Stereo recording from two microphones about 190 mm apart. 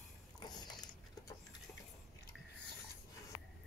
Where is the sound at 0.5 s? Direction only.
20° left (ahead or behind).